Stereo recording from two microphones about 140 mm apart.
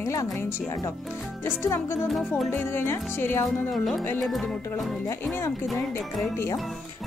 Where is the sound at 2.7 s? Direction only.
15° left (ahead or behind).